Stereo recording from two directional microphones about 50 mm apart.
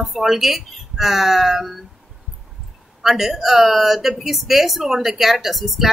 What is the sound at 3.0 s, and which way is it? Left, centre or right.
Speech, centre.